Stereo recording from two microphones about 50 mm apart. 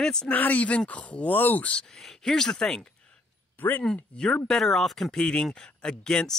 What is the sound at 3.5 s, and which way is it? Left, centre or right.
Speech, left.